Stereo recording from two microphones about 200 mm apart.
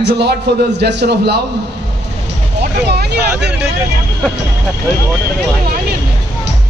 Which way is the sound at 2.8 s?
55° right (ahead or behind).